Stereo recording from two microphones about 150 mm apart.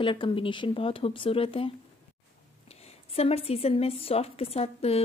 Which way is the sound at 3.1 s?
40° left (ahead or behind).